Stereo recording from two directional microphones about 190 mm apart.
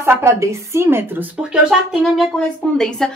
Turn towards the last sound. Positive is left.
turn(degrees=5)  # may be behind; listen again after turning